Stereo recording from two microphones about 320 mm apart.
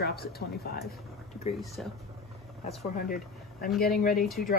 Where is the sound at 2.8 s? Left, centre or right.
Left.